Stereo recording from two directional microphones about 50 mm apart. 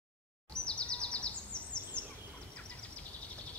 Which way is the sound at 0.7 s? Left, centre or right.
Left.